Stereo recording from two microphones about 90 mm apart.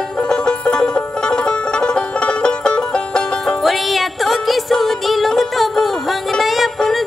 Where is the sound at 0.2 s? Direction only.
10° left (ahead or behind).